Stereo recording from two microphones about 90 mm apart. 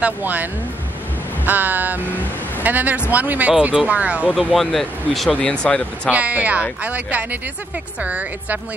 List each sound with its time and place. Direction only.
0.0 s music: 20° right (ahead or behind)
3.1 s speech: 20° right (ahead or behind)
4.4 s speech: centre (ahead or behind)
6.0 s speech: 15° right (ahead or behind)